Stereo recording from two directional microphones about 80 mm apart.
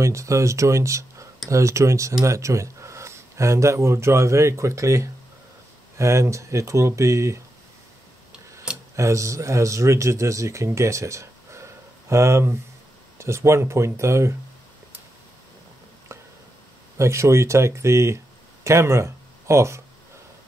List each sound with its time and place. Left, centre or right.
0.0 s speech: right
8.9 s speech: right
17.0 s speech: right